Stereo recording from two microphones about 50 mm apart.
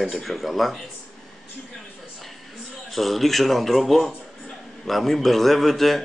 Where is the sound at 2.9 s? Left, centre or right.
Centre.